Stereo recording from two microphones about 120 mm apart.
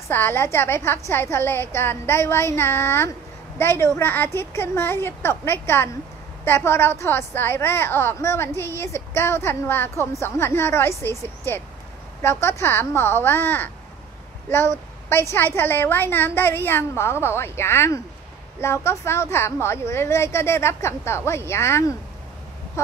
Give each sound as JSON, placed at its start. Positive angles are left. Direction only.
{"t": 0.1, "sound": "a woman's voice", "side_deg": 20}